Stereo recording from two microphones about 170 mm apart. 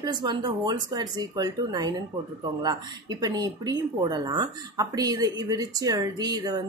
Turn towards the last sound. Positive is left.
turn(degrees=-25)  # may be behind; listen again after turning